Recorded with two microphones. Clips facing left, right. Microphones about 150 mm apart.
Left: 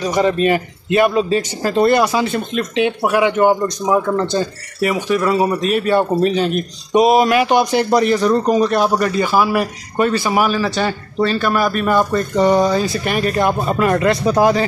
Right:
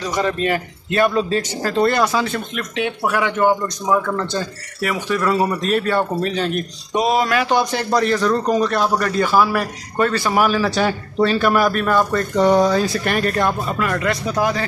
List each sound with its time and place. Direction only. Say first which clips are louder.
0.0 s a man's voice: left 5 dB; 15° left (ahead or behind); by 11.8 s centre (ahead or behind)
11.8 s a man's voice: left 2 dB; 10° left (ahead or behind)
13.7 s speech: left 6 dB; 30° left (ahead or behind)